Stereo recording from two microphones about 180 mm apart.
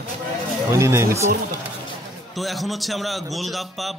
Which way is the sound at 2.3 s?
Centre (ahead or behind).